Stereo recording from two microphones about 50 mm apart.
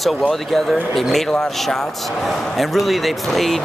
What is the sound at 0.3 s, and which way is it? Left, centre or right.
Speech, centre.